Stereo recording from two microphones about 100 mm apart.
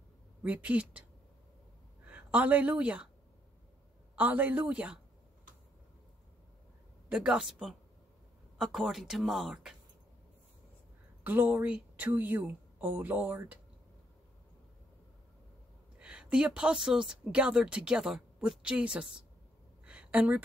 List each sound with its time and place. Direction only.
0.4 s speech: 15° right (ahead or behind)
2.0 s a woman's voice: 15° right (ahead or behind)
4.1 s speech: 15° right (ahead or behind)
7.1 s speech: 5° right (ahead or behind)
11.2 s speech: 20° right (ahead or behind)
16.0 s speech: 10° right (ahead or behind)
19.8 s a sound: 10° right (ahead or behind)